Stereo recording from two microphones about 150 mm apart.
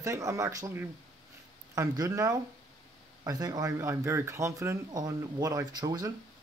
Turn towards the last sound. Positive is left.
turn(degrees=-25)  # may be behind; listen again after turning